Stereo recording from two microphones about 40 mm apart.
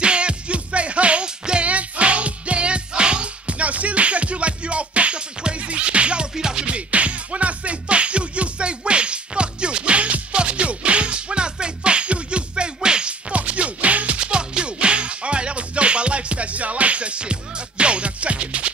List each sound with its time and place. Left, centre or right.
0.0 s music: right
1.7 s music: right
6.3 s music: centre
6.7 s music: right